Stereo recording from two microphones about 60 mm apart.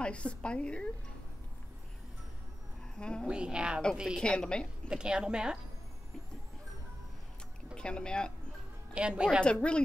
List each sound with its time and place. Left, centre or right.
0.0 s a woman's voice: centre
3.0 s speech: centre
3.3 s a woman's voice: centre
4.2 s speech: centre
4.8 s a woman's voice: centre
7.7 s speech: centre
8.9 s a woman's voice: centre
9.4 s speech: centre